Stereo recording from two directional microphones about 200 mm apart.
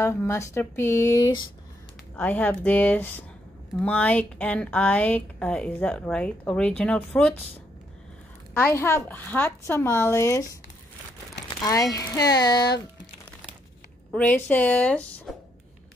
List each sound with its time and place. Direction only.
0.0 s a woman's voice: 15° left (ahead or behind)
2.1 s a woman's voice: 10° left (ahead or behind)
8.5 s a woman's voice: 10° left (ahead or behind)
14.1 s a woman's voice: 10° left (ahead or behind)